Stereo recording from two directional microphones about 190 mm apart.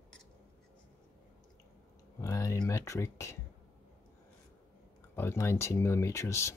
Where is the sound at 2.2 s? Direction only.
15° left (ahead or behind).